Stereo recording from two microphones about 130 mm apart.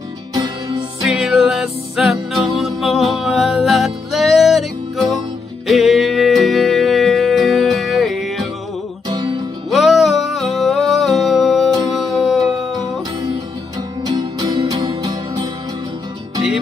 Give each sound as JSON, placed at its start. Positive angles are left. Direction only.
{"t": 0.4, "sound": "music", "side_deg": -35}
{"t": 1.2, "sound": "music", "side_deg": -5}
{"t": 5.7, "sound": "music", "side_deg": 0}
{"t": 9.7, "sound": "music", "side_deg": 0}
{"t": 14.0, "sound": "music", "side_deg": -35}